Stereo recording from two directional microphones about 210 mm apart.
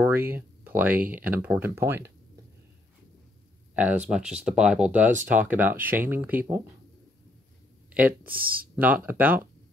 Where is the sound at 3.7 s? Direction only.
5° right (ahead or behind).